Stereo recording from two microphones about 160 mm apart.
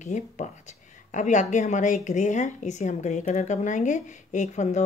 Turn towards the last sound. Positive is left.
turn(degrees=45)  # may be behind; listen again after turning